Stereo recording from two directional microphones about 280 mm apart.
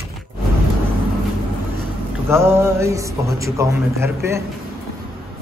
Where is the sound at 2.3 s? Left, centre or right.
Centre.